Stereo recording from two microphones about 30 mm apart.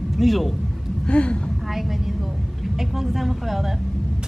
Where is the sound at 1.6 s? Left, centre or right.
Centre.